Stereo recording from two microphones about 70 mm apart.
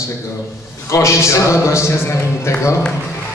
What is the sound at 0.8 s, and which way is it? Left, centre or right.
A man's voice, left.